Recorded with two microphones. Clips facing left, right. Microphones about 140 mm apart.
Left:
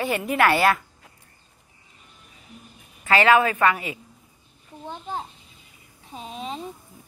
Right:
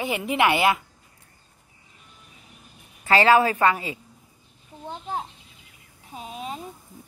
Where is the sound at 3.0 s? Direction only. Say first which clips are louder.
Even; 30° right (ahead or behind).